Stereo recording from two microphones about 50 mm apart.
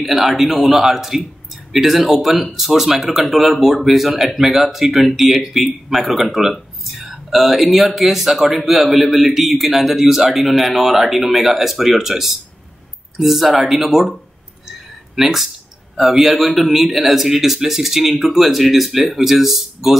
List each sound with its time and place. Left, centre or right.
0.0 s a man's voice: centre
15.1 s a man's voice: centre